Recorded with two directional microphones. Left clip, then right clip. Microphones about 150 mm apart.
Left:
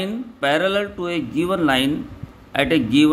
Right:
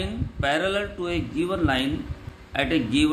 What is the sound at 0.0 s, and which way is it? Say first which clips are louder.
Speech: left 5 dB; 35° left (ahead or behind).